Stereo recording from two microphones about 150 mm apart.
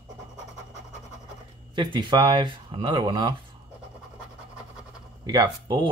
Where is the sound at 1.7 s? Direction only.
30° right (ahead or behind).